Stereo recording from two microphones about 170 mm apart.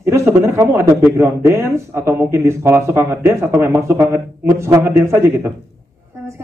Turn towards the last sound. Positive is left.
turn(degrees=-15)  # may be behind; listen again after turning